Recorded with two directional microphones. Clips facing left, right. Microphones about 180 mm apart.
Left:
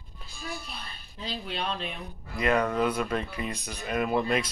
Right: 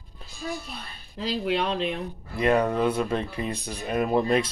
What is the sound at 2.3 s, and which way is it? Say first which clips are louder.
Speech: right 3 dB; 30° right (ahead or behind).